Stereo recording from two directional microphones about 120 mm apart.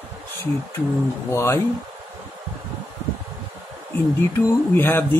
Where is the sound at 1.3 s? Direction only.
20° left (ahead or behind).